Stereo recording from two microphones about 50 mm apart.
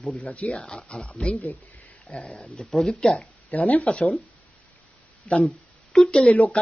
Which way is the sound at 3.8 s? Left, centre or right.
Centre.